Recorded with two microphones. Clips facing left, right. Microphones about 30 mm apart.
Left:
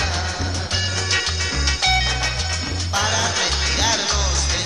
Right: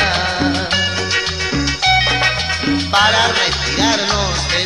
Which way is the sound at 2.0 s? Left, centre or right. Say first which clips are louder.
Right 8 dB; right.